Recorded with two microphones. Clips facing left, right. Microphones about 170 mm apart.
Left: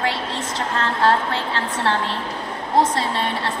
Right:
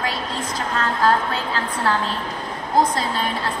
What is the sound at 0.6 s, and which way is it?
A woman's voice, 30° left (ahead or behind).